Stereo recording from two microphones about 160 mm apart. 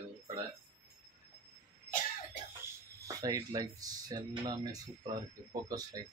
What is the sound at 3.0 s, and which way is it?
Speech, 20° right (ahead or behind).